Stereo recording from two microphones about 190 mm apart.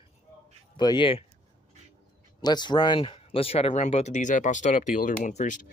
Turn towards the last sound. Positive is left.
turn(degrees=40)  # may be behind; listen again after turning